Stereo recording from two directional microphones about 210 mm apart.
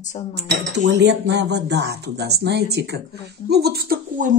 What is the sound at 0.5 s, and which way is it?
Speech, 55° right (ahead or behind).